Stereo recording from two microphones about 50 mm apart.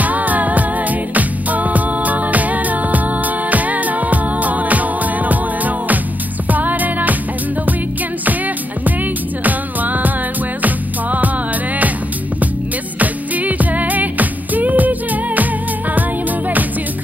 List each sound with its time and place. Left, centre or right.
0.0 s music: right
6.5 s music: right
9.4 s music: right
13.0 s music: right